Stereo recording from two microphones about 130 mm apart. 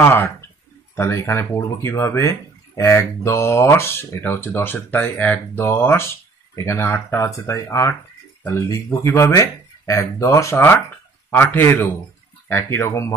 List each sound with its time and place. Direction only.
0.0 s a man's voice: 20° left (ahead or behind)